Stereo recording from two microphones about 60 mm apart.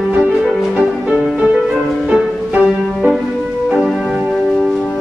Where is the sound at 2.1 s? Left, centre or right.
Right.